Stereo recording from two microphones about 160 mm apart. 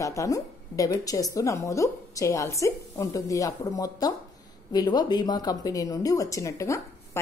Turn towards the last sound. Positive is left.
turn(degrees=20)  # may be behind; listen again after turning